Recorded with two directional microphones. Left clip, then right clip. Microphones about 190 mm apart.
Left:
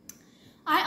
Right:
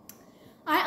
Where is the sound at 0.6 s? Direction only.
20° left (ahead or behind).